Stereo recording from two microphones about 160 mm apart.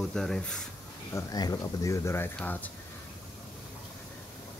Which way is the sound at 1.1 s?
25° left (ahead or behind).